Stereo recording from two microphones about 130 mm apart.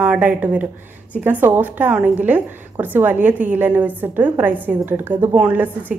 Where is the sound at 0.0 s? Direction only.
10° right (ahead or behind).